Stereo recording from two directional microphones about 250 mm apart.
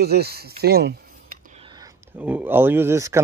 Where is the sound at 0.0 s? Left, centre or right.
Right.